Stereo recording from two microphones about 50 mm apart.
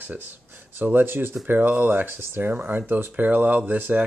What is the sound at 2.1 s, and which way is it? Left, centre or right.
Speech, right.